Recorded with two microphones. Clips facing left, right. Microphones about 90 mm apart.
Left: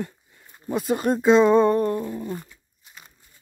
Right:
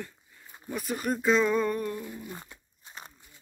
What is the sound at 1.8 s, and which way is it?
Dog, 50° left (ahead or behind).